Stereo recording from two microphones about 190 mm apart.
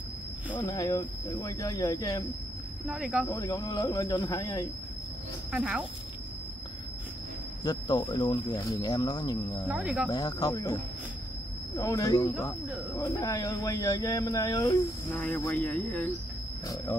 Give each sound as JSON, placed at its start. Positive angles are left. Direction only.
{"t": 0.5, "sound": "speech", "side_deg": 15}
{"t": 2.9, "sound": "speech", "side_deg": -5}
{"t": 3.3, "sound": "speech", "side_deg": 20}
{"t": 5.5, "sound": "speech", "side_deg": -5}
{"t": 7.6, "sound": "speech", "side_deg": 20}
{"t": 9.7, "sound": "speech", "side_deg": -5}
{"t": 10.0, "sound": "speech", "side_deg": 20}